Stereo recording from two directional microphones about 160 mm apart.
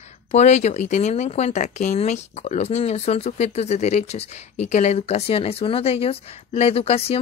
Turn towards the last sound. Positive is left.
turn(degrees=40)  # may be behind; listen again after turning